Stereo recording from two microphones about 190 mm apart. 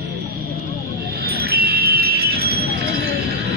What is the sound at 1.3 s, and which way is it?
Music, 55° right (ahead or behind).